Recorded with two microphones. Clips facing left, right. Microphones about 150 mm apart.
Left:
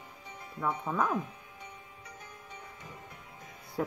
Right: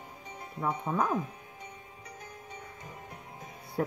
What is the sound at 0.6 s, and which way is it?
Speech, 20° right (ahead or behind).